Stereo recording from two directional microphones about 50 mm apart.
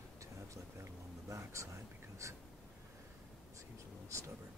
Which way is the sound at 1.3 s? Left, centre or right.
Right.